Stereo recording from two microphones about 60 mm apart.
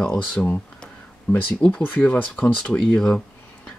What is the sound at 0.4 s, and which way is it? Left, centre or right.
Cutlery, centre.